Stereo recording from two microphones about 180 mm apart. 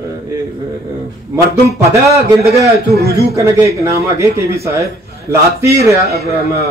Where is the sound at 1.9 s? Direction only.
15° right (ahead or behind).